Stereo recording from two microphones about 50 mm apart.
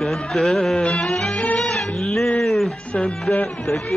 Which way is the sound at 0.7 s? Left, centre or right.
Centre.